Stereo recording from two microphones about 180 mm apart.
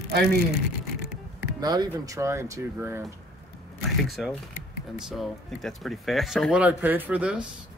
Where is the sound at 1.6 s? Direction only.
20° right (ahead or behind).